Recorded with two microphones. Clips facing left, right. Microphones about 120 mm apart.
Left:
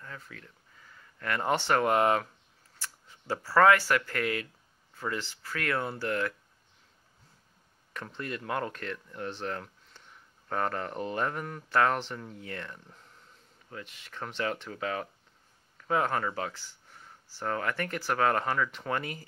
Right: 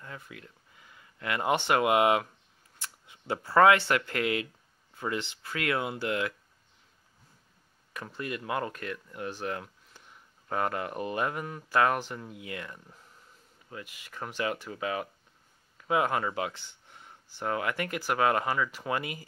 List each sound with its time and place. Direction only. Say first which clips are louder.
0.0 s speech: right 1 dB; 15° right (ahead or behind)
7.9 s speech: right 1 dB; 10° right (ahead or behind)